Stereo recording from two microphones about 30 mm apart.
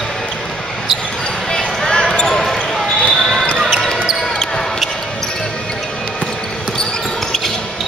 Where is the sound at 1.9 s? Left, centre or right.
Left.